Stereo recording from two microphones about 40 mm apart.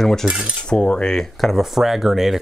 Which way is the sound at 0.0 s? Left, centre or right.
Centre.